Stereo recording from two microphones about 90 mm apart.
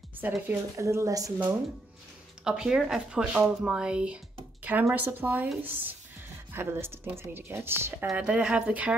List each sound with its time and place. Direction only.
0.2 s speech: 25° right (ahead or behind)
0.7 s a woman's voice: 35° right (ahead or behind)
2.4 s speech: 10° right (ahead or behind); by 8.1 s 25° right (ahead or behind)
8.2 s speech: 10° right (ahead or behind)